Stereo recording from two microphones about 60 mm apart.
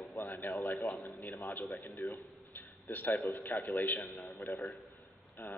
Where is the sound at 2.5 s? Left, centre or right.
Left.